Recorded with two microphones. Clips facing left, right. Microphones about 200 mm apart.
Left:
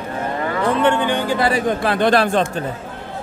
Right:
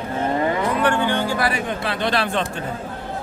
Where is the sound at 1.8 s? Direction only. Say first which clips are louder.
Left 7 dB; 50° left (ahead or behind).